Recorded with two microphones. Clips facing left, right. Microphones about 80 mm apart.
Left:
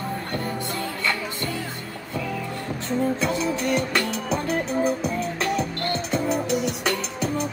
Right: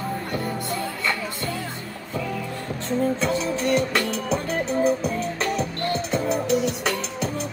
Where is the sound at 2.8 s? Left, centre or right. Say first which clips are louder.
Right 1 dB; centre.